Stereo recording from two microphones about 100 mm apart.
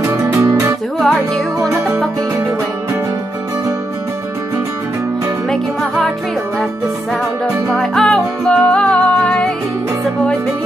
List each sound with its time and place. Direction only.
0.0 s music: 30° right (ahead or behind)
0.9 s music: 5° left (ahead or behind)
7.7 s music: 5° left (ahead or behind)